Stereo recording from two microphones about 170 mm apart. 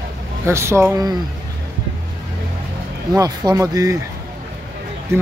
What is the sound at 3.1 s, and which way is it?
Speech, 20° right (ahead or behind).